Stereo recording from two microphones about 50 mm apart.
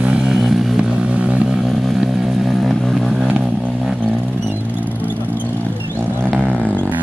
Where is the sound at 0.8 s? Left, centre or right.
Right.